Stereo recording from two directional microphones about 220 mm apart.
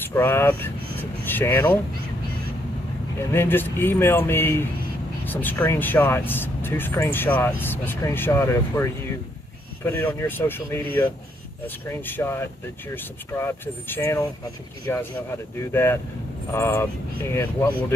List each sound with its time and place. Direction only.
0.0 s speech: 10° left (ahead or behind)
3.2 s speech: 10° left (ahead or behind)
9.8 s speech: 10° left (ahead or behind)